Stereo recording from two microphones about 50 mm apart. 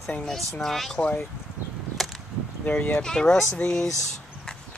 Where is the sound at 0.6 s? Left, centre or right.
Centre.